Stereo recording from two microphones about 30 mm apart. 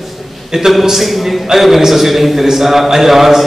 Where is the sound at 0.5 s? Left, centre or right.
Centre.